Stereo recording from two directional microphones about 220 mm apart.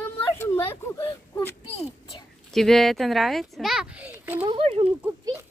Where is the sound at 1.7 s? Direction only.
25° left (ahead or behind).